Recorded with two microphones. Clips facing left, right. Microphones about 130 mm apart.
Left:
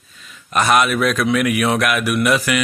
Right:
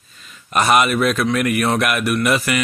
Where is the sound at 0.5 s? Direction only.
Centre (ahead or behind).